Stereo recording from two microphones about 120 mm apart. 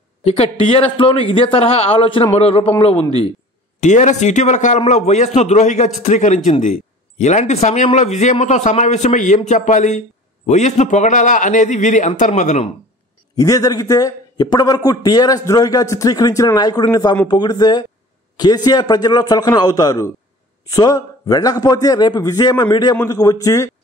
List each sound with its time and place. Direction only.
0.2 s a man's voice: 55° left (ahead or behind)
3.8 s a man's voice: 85° left
6.6 s a man's voice: 70° left (ahead or behind)
13.4 s a man's voice: 30° left (ahead or behind)